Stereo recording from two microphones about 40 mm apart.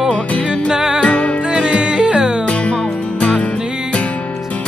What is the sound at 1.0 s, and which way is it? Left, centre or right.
Music, left.